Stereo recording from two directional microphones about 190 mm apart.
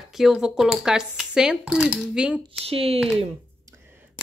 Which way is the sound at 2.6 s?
30° right (ahead or behind).